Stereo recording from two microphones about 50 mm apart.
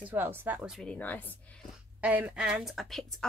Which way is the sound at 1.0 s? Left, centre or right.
Left.